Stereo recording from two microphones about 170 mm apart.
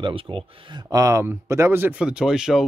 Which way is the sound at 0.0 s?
30° right (ahead or behind).